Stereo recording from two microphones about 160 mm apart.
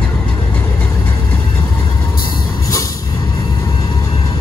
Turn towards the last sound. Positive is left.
turn(degrees=20)  # may be behind; listen again after turning